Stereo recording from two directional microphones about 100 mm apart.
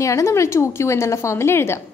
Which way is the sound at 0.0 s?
30° left (ahead or behind).